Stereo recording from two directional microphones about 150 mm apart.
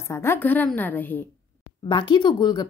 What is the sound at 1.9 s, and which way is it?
Speech, 30° left (ahead or behind).